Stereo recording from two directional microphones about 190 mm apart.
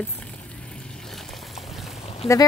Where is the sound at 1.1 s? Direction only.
Centre (ahead or behind).